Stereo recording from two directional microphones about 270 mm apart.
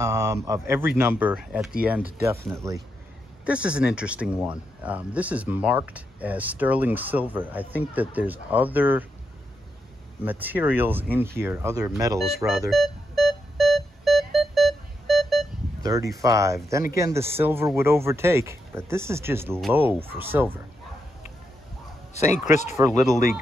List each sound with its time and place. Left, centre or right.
0.0 s speech: centre
10.2 s speech: centre
12.4 s synthesizer: centre
15.8 s speech: centre
22.5 s speech: left
23.1 s speech: centre